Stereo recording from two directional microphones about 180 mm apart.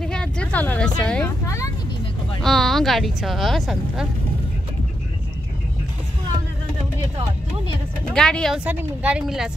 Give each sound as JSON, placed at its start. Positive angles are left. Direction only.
{"t": 0.0, "sound": "speech", "side_deg": 5}
{"t": 1.4, "sound": "speech", "side_deg": 15}
{"t": 2.4, "sound": "speech", "side_deg": 0}
{"t": 8.1, "sound": "speech", "side_deg": 5}
{"t": 8.6, "sound": "a woman's voice", "side_deg": -5}